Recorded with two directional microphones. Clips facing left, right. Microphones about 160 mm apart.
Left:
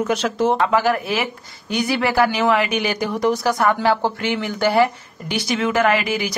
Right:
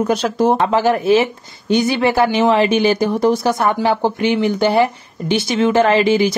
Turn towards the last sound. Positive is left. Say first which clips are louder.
# right 6 dB
turn(degrees=-25)  # may be behind; listen again after turning